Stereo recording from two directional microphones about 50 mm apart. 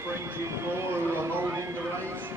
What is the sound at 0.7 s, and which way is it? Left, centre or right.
Speech, right.